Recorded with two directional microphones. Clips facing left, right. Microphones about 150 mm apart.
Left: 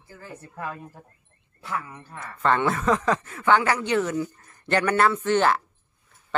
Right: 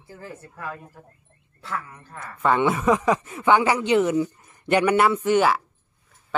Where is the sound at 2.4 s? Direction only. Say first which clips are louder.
Right 2 dB; 10° right (ahead or behind).